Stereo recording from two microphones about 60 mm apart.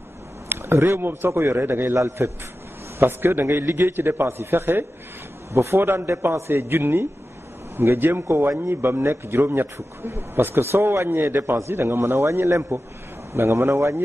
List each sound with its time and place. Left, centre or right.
0.5 s speech: right
2.0 s a man's voice: right